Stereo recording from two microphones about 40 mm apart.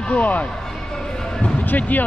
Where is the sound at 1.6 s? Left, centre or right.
Left.